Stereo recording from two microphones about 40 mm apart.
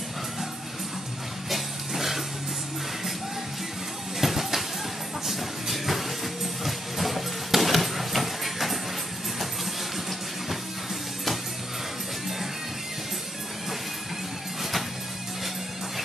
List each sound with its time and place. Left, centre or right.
1.5 s music: centre
4.2 s music: centre